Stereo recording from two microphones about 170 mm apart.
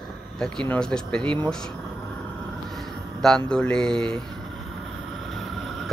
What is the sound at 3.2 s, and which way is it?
Speech, 5° left (ahead or behind).